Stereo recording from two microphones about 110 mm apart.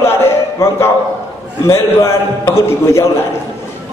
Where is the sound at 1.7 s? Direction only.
25° left (ahead or behind).